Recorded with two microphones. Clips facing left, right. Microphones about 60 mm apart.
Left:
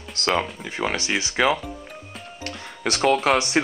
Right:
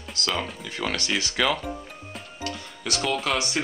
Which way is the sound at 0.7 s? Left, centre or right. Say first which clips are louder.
Left 3 dB; left.